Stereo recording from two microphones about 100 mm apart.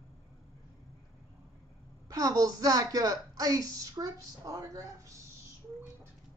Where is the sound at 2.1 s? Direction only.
35° right (ahead or behind).